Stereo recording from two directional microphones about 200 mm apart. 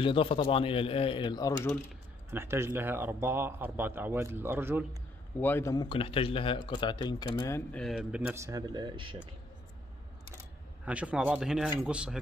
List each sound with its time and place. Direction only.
0.0 s speech: 25° left (ahead or behind)
2.3 s a man's voice: 10° right (ahead or behind)
5.4 s speech: 10° left (ahead or behind)
7.7 s a man's voice: centre (ahead or behind); by 9.3 s 25° right (ahead or behind)
10.9 s speech: 5° right (ahead or behind)